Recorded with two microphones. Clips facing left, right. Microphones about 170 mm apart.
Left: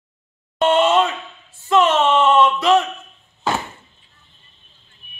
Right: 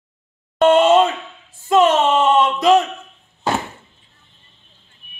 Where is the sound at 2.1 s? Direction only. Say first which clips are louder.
Left 1 dB; 15° right (ahead or behind).